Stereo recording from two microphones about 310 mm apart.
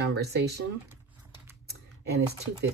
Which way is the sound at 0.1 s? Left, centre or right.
Right.